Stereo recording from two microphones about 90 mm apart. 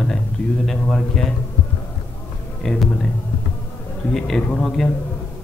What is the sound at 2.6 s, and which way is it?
Speech, 5° left (ahead or behind).